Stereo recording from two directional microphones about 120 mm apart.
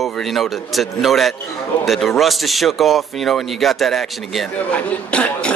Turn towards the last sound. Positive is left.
turn(degrees=10)  # may be behind; listen again after turning